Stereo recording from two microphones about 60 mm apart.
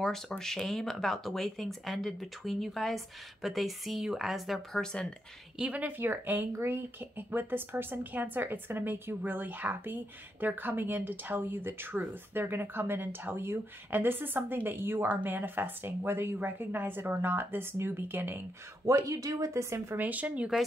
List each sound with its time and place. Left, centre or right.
0.0 s speech: centre
5.6 s speech: right
18.9 s speech: right
20.0 s speech: right